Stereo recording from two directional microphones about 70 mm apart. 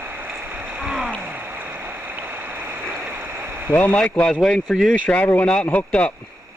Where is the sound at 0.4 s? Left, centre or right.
Right.